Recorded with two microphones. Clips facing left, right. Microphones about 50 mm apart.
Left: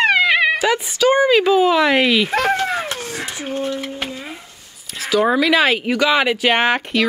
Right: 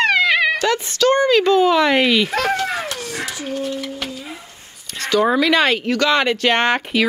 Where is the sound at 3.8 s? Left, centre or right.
Left.